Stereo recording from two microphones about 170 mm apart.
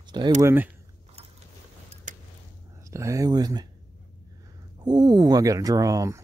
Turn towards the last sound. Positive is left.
turn(degrees=-20)  # may be behind; listen again after turning